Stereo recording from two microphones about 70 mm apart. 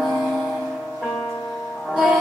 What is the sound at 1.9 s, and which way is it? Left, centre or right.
Music, centre.